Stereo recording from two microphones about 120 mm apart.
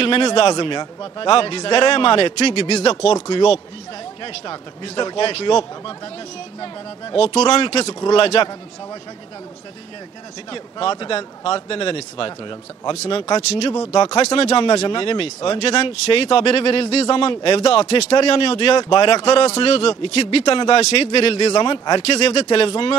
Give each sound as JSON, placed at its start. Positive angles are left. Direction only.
{"t": 0.0, "sound": "a man's voice", "side_deg": 50}
{"t": 0.5, "sound": "a man's voice", "side_deg": 40}
{"t": 4.2, "sound": "a man's voice", "side_deg": 45}
{"t": 10.5, "sound": "a man's voice", "side_deg": 45}
{"t": 12.9, "sound": "a man's voice", "side_deg": 60}
{"t": 17.7, "sound": "a man's voice", "side_deg": 60}
{"t": 18.8, "sound": "a man's voice", "side_deg": 35}
{"t": 19.2, "sound": "a man's voice", "side_deg": 60}
{"t": 21.5, "sound": "a man's voice", "side_deg": 35}
{"t": 22.2, "sound": "a man's voice", "side_deg": 60}